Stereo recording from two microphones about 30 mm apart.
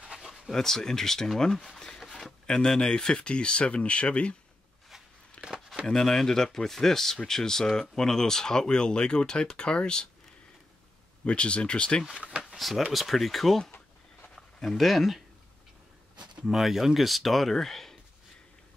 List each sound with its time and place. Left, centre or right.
0.5 s speech: centre
2.0 s a sound: centre
2.4 s speech: left
5.4 s a sound: left
5.9 s speech: centre; by 10.0 s left
11.2 s speech: left
12.2 s drawer open or close: right
12.5 s speech: centre
14.6 s speech: centre
16.6 s speech: centre